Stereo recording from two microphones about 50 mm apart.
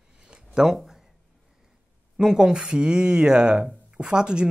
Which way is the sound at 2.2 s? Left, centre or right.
Centre.